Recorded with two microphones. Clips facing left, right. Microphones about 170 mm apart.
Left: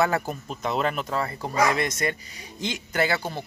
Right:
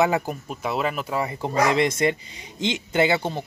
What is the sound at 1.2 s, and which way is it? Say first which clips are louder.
Speech: right 2 dB; 25° right (ahead or behind).